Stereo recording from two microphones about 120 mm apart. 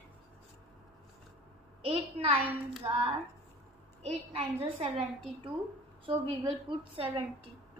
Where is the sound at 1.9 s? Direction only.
55° right (ahead or behind).